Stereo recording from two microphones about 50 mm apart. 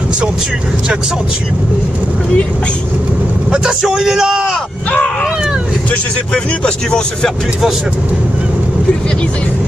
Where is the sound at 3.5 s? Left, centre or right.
Centre.